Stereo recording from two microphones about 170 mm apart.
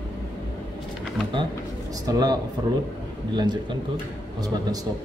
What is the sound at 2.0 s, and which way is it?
Speech, 25° right (ahead or behind).